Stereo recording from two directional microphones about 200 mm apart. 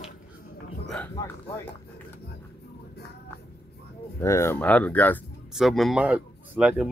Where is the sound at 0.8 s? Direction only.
5° left (ahead or behind).